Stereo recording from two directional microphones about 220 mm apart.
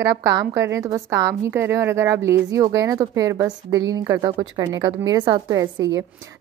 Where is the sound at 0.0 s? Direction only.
15° right (ahead or behind).